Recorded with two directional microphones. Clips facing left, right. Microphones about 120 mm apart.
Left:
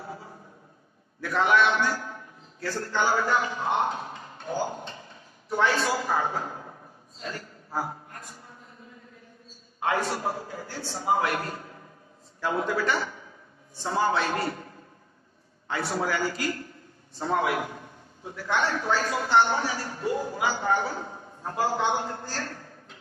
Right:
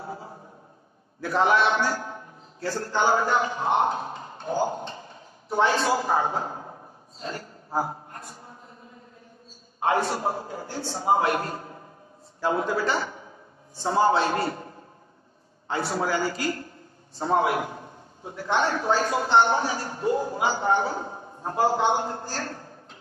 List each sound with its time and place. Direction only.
0.0 s a sound: 25° right (ahead or behind)
9.8 s a man's voice: 25° right (ahead or behind)
15.7 s a man's voice: 25° right (ahead or behind)